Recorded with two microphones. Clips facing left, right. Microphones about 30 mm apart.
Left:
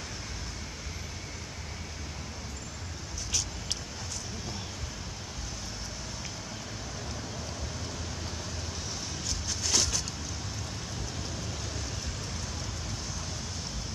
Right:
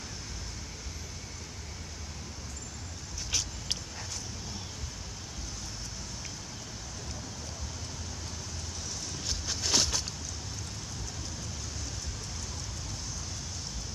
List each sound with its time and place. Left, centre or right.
3.3 s vehicle: centre
9.3 s vehicle: centre